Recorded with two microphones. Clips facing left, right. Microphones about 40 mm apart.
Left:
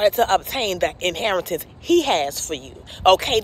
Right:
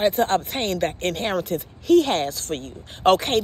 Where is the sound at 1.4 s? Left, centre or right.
Left.